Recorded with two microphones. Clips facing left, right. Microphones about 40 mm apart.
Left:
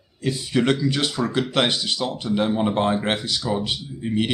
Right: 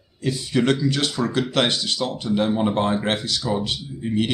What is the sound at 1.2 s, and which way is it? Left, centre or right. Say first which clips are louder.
Speech: right 1 dB; centre.